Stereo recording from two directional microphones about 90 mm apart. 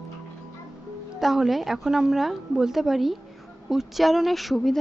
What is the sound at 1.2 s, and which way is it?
A woman's voice, 5° right (ahead or behind).